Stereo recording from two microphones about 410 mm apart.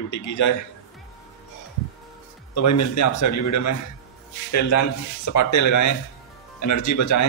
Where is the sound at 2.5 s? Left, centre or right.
Left.